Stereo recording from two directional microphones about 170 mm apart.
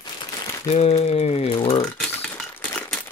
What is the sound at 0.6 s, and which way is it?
Speech, 40° left (ahead or behind).